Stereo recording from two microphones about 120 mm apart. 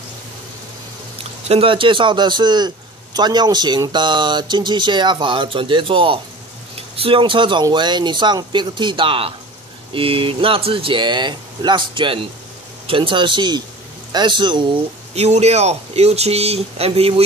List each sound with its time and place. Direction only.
1.5 s a man's voice: 50° right (ahead or behind)
15.1 s speech: 65° right (ahead or behind)